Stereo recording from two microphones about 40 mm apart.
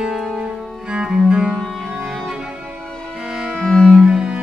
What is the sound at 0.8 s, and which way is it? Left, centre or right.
Cello, right.